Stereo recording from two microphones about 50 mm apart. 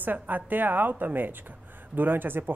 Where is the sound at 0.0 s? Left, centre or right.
Right.